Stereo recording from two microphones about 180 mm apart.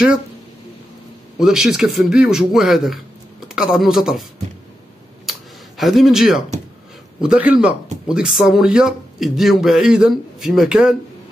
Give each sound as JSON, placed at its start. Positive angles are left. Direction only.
{"t": 1.4, "sound": "speech", "side_deg": -5}
{"t": 5.8, "sound": "speech", "side_deg": 0}